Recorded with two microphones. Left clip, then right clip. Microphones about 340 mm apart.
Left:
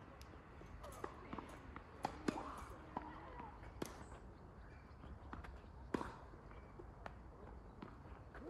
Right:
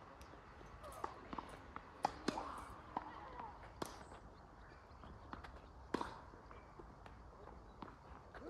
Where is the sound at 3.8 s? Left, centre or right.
Centre.